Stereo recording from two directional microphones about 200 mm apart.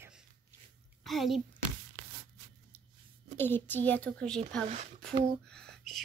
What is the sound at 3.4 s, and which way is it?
A child's voice, 10° left (ahead or behind).